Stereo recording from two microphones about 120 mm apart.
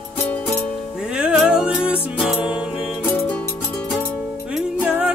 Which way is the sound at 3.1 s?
15° left (ahead or behind).